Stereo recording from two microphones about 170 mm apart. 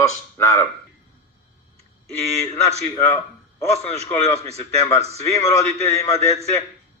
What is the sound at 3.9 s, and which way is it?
Speech, 40° right (ahead or behind).